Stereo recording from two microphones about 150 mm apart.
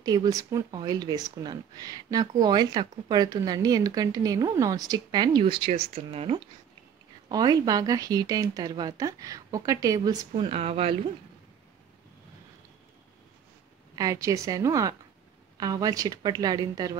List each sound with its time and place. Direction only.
0.0 s speech: 25° right (ahead or behind); by 6.4 s 40° right (ahead or behind)
7.2 s speech: 30° right (ahead or behind)
10.3 s speech: 40° right (ahead or behind)
13.9 s speech: 20° right (ahead or behind)